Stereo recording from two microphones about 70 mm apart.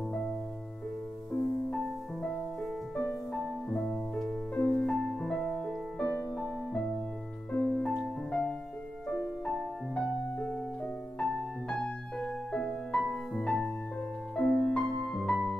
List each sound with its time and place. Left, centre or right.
3.7 s music: centre; by 6.5 s left
7.5 s music: centre
11.7 s music: centre